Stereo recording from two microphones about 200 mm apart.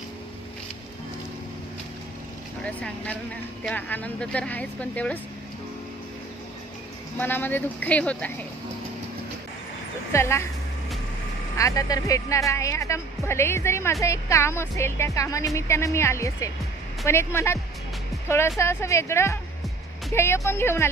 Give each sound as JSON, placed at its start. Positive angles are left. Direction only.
{"t": 2.6, "sound": "speech", "side_deg": 5}
{"t": 7.2, "sound": "speech", "side_deg": 10}
{"t": 10.1, "sound": "speech", "side_deg": 15}
{"t": 11.5, "sound": "speech", "side_deg": 15}
{"t": 18.6, "sound": "speech", "side_deg": 15}